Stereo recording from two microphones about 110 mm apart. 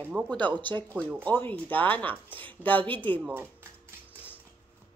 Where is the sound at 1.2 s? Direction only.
15° left (ahead or behind).